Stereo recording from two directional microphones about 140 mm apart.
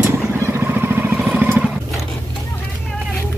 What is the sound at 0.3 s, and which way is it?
Vehicle, 15° right (ahead or behind).